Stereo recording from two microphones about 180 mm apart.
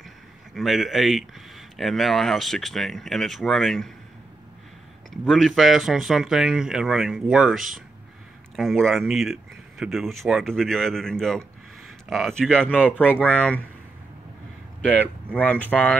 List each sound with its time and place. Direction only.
0.6 s speech: centre (ahead or behind)
5.1 s speech: centre (ahead or behind)
15.3 s speech: 10° left (ahead or behind)